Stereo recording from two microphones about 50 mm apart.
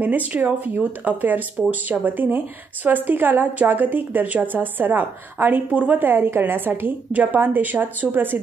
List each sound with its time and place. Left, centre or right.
0.0 s a woman's voice: right
6.0 s a woman's voice: right